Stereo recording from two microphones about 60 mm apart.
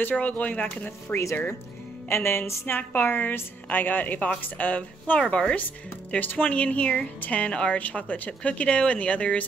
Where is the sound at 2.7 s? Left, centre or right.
Left.